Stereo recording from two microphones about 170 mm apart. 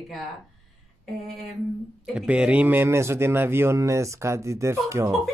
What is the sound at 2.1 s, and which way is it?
A man's voice, 5° right (ahead or behind).